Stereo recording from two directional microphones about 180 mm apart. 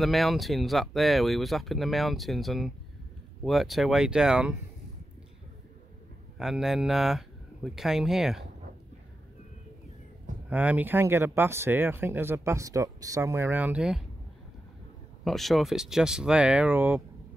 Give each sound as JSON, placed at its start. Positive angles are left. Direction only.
{"t": 0.0, "sound": "speech", "side_deg": 0}
{"t": 6.3, "sound": "speech", "side_deg": 0}
{"t": 10.5, "sound": "speech", "side_deg": -10}
{"t": 15.2, "sound": "speech", "side_deg": 0}